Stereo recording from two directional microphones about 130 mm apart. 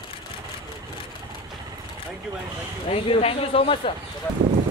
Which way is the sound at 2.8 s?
45° left (ahead or behind).